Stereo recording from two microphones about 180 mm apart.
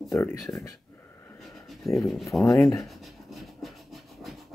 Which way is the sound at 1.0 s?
15° left (ahead or behind).